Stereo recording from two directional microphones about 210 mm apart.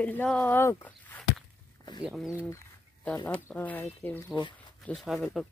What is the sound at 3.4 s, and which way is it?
Speech, 10° left (ahead or behind).